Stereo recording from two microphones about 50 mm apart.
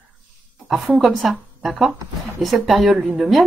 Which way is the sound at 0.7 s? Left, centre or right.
Centre.